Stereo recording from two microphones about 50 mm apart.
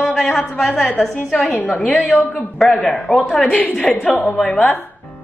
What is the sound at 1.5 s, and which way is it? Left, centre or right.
Speech, left.